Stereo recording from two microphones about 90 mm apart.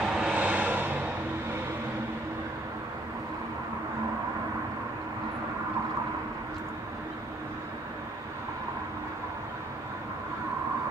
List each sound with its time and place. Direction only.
0.0 s vehicle: 10° right (ahead or behind)